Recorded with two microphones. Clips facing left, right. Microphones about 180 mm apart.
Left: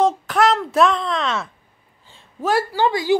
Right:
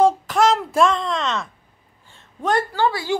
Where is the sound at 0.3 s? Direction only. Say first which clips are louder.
Even; centre (ahead or behind).